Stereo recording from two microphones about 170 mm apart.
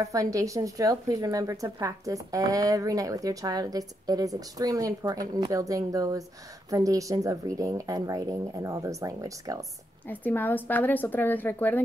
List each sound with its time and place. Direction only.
0.1 s a woman's voice: 20° right (ahead or behind)
10.0 s a woman's voice: 10° left (ahead or behind)